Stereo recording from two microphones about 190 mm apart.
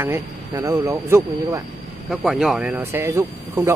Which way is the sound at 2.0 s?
Centre (ahead or behind).